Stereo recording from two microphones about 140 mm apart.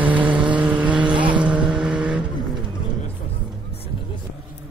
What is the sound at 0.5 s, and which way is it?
Vehicle, 10° right (ahead or behind).